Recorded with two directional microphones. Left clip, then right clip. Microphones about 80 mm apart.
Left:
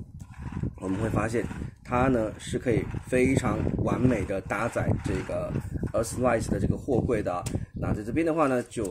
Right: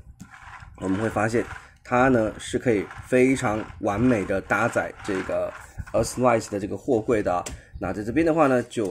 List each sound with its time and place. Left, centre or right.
1.0 s speech: right